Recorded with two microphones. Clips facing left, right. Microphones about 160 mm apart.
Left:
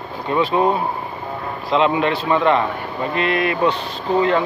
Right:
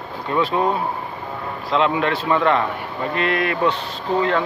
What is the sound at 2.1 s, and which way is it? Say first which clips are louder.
A man's voice: left 1 dB; 5° left (ahead or behind).